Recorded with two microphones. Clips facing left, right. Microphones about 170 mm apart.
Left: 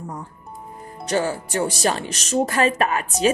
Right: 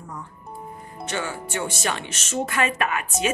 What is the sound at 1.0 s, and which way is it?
Speech, 35° left (ahead or behind).